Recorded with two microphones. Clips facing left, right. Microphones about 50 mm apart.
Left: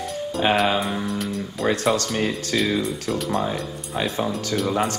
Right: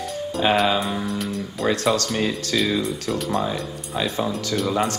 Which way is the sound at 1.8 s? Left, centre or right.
Left.